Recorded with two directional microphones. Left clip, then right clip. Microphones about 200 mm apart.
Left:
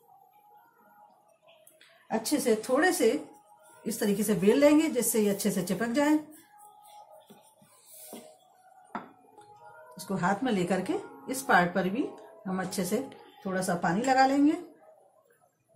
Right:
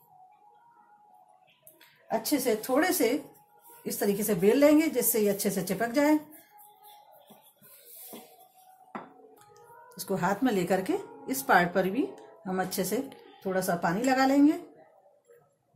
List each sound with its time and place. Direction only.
2.0 s a woman's voice: 25° right (ahead or behind)
3.8 s a woman's voice: 20° right (ahead or behind)
9.5 s a woman's voice: 30° right (ahead or behind)